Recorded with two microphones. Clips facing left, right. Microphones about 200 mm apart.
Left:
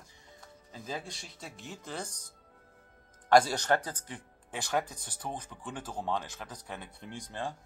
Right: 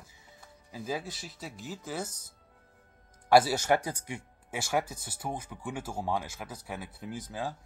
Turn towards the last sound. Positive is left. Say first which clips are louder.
# right 2 dB
turn(degrees=-5)  # may be behind; listen again after turning